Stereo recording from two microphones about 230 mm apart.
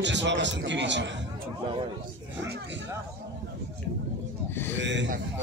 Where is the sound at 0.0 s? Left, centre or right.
Right.